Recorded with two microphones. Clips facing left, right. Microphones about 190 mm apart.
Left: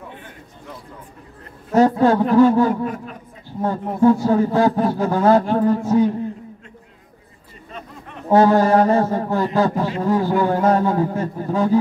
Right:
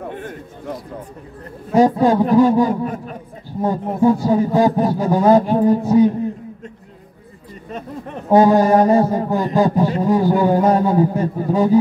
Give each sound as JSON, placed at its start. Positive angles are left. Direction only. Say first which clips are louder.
{"t": 0.0, "sound": "speech", "louder": "right 9 dB", "side_deg": -50}
{"t": 1.8, "sound": "a man's voice", "louder": "right 1 dB", "side_deg": -15}
{"t": 8.3, "sound": "a man's voice", "louder": "right 2 dB", "side_deg": -15}